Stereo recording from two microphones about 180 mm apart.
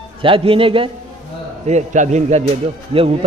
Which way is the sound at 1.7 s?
40° right (ahead or behind).